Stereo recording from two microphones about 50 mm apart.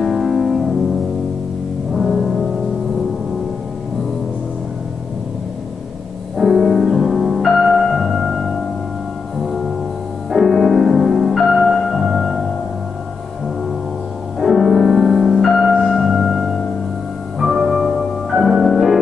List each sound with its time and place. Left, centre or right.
0.0 s music: centre
2.0 s music: centre
6.3 s music: centre
14.4 s music: centre